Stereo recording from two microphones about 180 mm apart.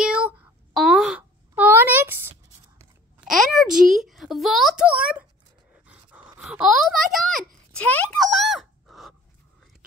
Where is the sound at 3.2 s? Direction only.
Centre (ahead or behind).